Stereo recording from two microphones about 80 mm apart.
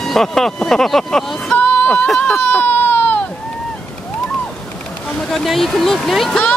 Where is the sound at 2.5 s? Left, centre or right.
Left.